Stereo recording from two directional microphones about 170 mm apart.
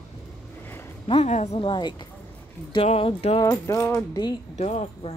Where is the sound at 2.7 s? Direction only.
35° left (ahead or behind).